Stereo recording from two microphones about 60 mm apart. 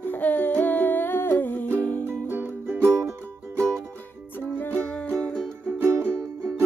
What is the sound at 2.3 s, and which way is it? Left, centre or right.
Music, right.